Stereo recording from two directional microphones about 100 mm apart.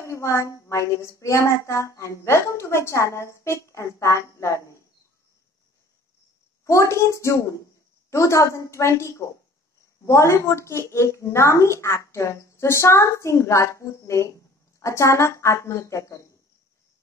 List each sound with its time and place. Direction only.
0.0 s a woman's voice: 30° left (ahead or behind)
6.6 s a woman's voice: 30° left (ahead or behind)